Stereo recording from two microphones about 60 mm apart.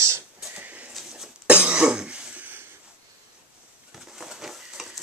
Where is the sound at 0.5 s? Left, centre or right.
Right.